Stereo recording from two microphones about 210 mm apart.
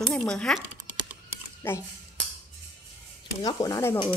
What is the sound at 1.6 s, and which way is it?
Speech, 10° left (ahead or behind).